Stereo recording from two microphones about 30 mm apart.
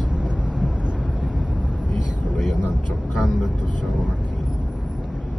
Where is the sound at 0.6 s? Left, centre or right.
Right.